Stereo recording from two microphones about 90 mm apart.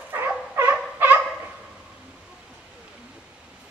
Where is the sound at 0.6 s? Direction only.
20° right (ahead or behind).